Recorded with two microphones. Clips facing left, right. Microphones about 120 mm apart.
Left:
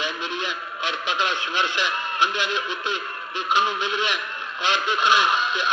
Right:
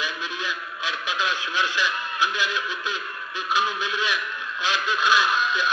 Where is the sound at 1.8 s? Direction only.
20° left (ahead or behind).